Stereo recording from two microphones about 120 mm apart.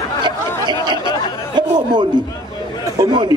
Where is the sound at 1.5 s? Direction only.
40° right (ahead or behind).